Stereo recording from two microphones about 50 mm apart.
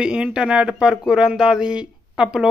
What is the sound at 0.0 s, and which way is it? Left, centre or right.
Speech, centre.